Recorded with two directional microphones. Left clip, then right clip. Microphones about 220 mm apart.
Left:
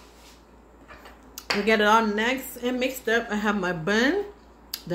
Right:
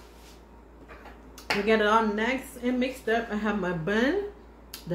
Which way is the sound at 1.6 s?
45° left (ahead or behind).